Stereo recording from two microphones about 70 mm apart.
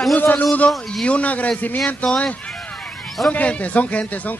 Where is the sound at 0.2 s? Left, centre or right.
Left.